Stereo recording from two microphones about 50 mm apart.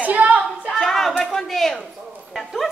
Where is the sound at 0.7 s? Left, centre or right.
Centre.